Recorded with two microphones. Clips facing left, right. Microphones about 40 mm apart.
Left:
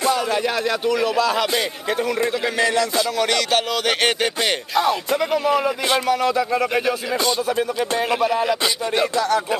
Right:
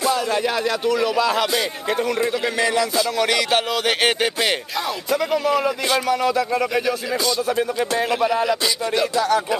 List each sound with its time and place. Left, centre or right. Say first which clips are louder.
0.1 s speech: even; centre
5.1 s speech: right 3 dB; centre
8.0 s speech: even; centre
8.5 s speech: even; left
9.1 s speech: right 3 dB; centre